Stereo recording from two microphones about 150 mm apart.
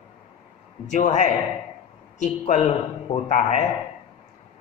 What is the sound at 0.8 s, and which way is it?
A man's voice, 55° left (ahead or behind).